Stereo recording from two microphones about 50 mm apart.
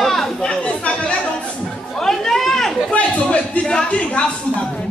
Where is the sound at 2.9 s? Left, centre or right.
Left.